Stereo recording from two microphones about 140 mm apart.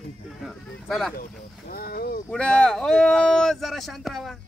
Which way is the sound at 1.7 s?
90° left.